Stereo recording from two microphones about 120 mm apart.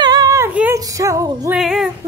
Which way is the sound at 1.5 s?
5° right (ahead or behind).